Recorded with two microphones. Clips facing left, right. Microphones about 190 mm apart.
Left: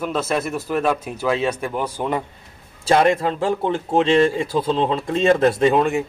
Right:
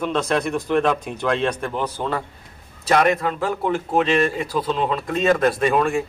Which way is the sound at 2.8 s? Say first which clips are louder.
Left 2 dB; 25° left (ahead or behind).